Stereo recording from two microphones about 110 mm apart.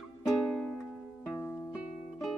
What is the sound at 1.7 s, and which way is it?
Music, centre (ahead or behind).